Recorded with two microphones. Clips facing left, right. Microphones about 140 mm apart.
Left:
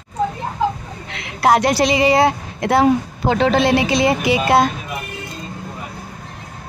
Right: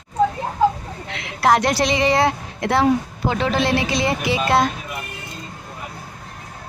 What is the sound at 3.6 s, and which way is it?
Speech, 15° left (ahead or behind).